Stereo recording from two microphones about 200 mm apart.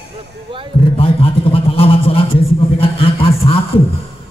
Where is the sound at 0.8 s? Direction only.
25° left (ahead or behind).